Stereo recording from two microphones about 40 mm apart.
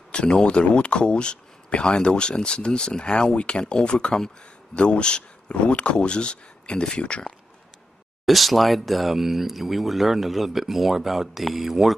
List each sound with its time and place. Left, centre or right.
0.1 s speech: left
8.3 s speech: centre